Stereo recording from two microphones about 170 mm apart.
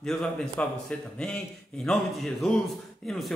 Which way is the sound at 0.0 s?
Centre (ahead or behind).